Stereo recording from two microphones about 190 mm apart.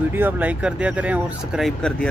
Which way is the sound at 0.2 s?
5° right (ahead or behind).